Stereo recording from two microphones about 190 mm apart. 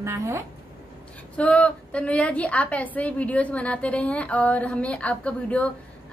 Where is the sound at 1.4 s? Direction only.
5° left (ahead or behind).